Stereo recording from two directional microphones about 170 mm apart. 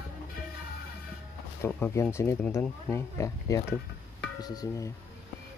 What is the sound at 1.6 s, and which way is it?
Speech, 15° left (ahead or behind).